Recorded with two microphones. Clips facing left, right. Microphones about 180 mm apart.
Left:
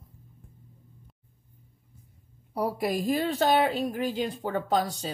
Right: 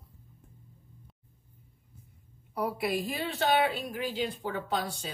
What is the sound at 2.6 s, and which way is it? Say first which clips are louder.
A woman's voice: left 3 dB; 40° left (ahead or behind).